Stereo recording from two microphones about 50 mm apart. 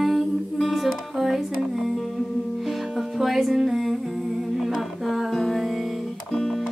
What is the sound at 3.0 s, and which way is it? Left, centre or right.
Music, centre.